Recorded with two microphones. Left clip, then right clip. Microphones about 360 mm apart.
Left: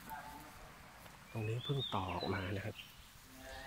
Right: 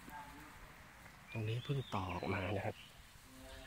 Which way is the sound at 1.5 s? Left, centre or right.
Centre.